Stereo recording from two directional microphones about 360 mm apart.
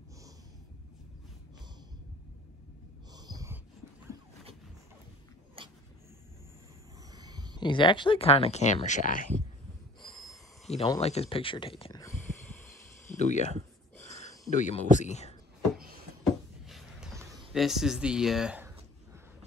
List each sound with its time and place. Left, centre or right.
3.1 s wheeze: centre
5.6 s dog: centre
7.1 s a sound: centre
7.5 s speech: centre
10.0 s snort: centre
10.7 s speech: centre
13.1 s speech: centre
14.0 s a sound: centre
14.5 s speech: left
16.6 s a sound: centre